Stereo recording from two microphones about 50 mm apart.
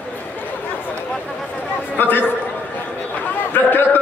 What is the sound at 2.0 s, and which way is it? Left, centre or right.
Speech, left.